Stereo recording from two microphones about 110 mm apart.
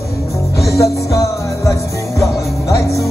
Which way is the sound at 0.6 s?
30° left (ahead or behind).